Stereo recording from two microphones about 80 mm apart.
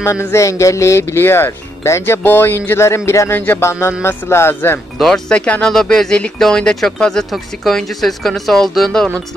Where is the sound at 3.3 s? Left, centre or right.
Left.